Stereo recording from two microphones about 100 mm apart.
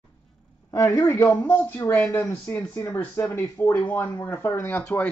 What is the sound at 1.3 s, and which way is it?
Speech, 10° left (ahead or behind).